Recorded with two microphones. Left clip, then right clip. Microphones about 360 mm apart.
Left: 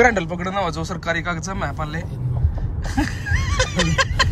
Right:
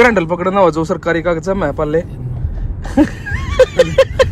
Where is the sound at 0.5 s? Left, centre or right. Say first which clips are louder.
Right 12 dB; centre.